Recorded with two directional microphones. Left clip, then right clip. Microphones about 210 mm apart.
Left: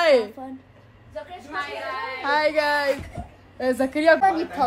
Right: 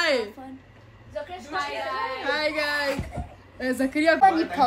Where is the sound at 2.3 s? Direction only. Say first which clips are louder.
Left 6 dB; 30° left (ahead or behind).